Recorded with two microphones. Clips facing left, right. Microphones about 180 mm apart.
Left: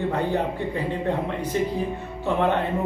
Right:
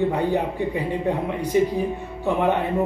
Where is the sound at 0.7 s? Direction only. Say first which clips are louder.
Right 2 dB; 15° right (ahead or behind).